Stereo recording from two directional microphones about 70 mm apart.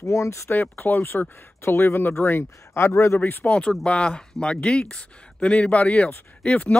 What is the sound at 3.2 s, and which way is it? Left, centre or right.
Speech, left.